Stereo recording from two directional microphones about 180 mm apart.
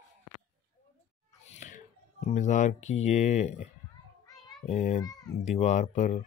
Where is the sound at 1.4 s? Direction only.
45° left (ahead or behind).